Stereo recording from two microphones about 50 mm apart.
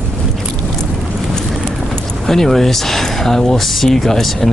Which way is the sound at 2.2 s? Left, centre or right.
Centre.